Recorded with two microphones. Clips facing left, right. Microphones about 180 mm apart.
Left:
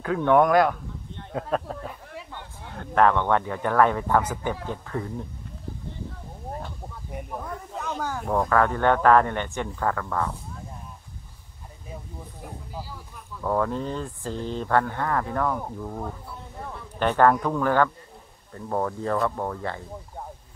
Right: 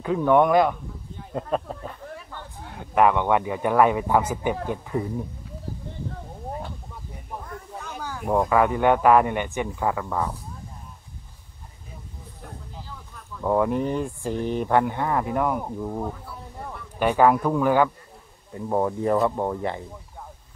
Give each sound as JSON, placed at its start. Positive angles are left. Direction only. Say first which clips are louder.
{"t": 0.0, "sound": "a man's voice", "louder": "right 1 dB", "side_deg": 0}
{"t": 7.8, "sound": "a sound", "louder": "left 5 dB", "side_deg": 50}
{"t": 8.3, "sound": "a man's voice", "louder": "right 2 dB", "side_deg": -15}
{"t": 13.4, "sound": "a man's voice", "louder": "right 4 dB", "side_deg": -15}